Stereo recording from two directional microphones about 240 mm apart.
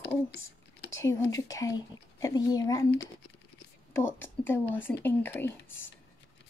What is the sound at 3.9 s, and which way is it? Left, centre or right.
Speech, centre.